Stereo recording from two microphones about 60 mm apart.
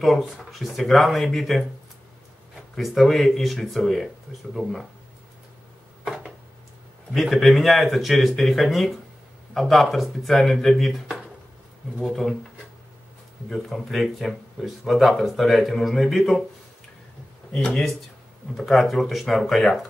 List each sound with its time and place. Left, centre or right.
0.4 s speech: centre
2.7 s speech: centre
6.0 s a sound: centre
7.2 s speech: centre
13.5 s speech: centre
17.5 s speech: centre